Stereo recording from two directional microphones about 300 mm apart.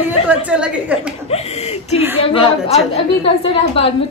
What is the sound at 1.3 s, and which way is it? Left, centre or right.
A woman's voice, left.